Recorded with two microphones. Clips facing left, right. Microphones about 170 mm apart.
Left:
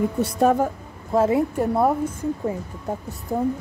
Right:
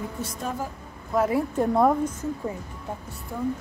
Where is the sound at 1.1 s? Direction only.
25° left (ahead or behind).